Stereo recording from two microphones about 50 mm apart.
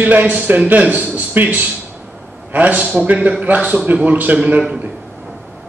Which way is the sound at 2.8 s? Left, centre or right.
Right.